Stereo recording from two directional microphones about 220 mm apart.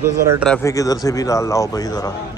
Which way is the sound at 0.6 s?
15° left (ahead or behind).